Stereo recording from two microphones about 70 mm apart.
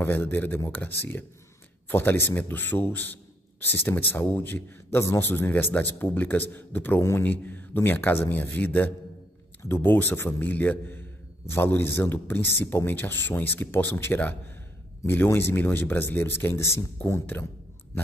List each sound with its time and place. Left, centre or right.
0.0 s a man's voice: left
7.0 s a man's voice: left
7.2 s a man's voice: left